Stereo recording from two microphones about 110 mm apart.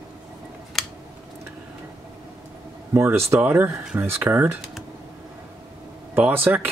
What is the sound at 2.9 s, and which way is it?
Speech, 25° right (ahead or behind).